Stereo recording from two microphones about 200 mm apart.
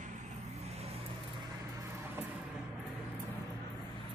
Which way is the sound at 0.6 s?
30° right (ahead or behind).